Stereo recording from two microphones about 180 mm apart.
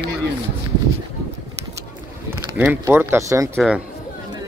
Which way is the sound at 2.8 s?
10° right (ahead or behind).